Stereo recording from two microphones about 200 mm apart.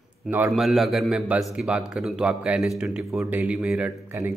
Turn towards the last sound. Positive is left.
turn(degrees=-10)  # may be behind; listen again after turning